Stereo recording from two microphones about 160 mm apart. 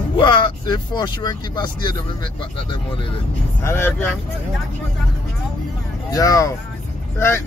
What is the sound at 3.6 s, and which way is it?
Speech, 15° left (ahead or behind).